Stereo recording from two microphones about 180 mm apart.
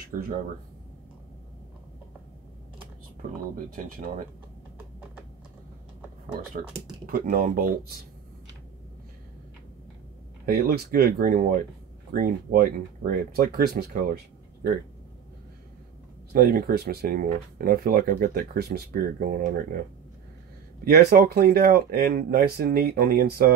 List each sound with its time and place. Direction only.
7.1 s speech: 50° right (ahead or behind)
10.4 s speech: 55° right (ahead or behind)
16.3 s speech: 55° right (ahead or behind)
20.8 s speech: 60° right (ahead or behind)